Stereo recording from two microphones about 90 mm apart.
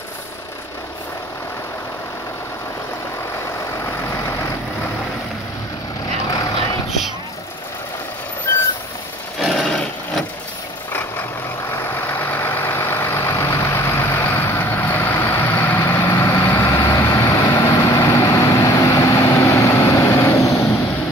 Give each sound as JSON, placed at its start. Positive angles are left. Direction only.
{"t": 3.8, "sound": "vehicle", "side_deg": 30}
{"t": 9.4, "sound": "a sound", "side_deg": 5}
{"t": 11.9, "sound": "vehicle", "side_deg": 25}